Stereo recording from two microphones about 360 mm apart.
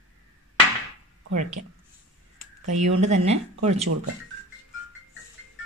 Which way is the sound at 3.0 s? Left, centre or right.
Centre.